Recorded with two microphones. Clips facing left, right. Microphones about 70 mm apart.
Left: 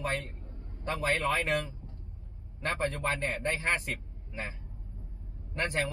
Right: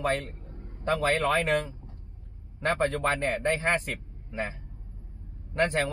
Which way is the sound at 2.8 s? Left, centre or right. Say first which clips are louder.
Right 4 dB; right.